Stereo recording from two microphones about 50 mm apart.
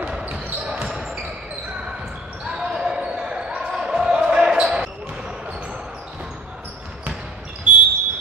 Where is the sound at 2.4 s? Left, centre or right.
Centre.